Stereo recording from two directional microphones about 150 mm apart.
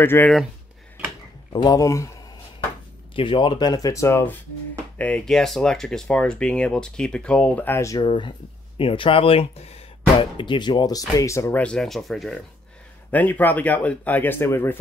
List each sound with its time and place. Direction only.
0.0 s speech: 15° left (ahead or behind)
1.5 s speech: 25° left (ahead or behind)
3.2 s speech: 35° left (ahead or behind); by 8.0 s 20° left (ahead or behind)
8.0 s speech: 30° left (ahead or behind)
11.6 s speech: 5° left (ahead or behind)